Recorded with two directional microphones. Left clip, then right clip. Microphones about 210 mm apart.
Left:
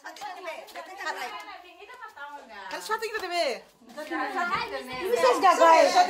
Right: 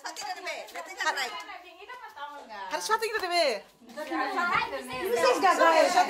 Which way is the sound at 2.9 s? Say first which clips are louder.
Right 2 dB; 15° right (ahead or behind).